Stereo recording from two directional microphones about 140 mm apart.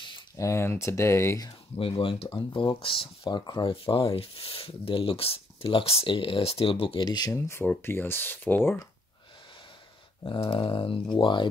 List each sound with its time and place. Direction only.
0.4 s speech: 20° left (ahead or behind)
1.8 s speech: 40° left (ahead or behind); by 8.7 s 15° left (ahead or behind)
10.5 s speech: 40° left (ahead or behind)